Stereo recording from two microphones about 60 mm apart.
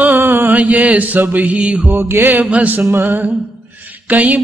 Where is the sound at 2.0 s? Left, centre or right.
Right.